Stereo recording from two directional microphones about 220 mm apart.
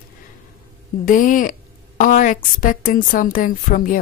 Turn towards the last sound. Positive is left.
turn(degrees=40)  # may be behind; listen again after turning